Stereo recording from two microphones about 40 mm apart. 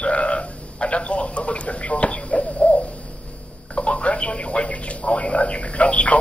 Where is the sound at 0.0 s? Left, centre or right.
Left.